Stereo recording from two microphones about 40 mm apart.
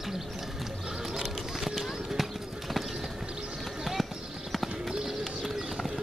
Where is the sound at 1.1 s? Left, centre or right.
Centre.